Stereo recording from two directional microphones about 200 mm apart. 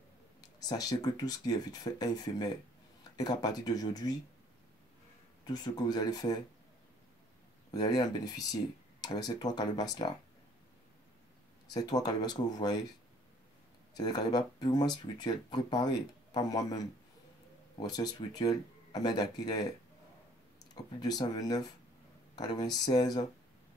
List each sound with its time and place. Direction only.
0.4 s speech: 20° left (ahead or behind)
5.4 s speech: 20° left (ahead or behind)
7.7 s speech: 20° left (ahead or behind)
11.7 s speech: 20° left (ahead or behind)
13.9 s speech: 20° left (ahead or behind)
20.7 s speech: 20° left (ahead or behind)